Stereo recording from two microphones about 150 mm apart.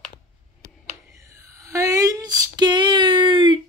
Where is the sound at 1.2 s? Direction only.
20° right (ahead or behind).